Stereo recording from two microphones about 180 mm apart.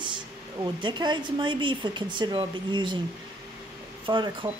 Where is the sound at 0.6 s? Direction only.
25° right (ahead or behind).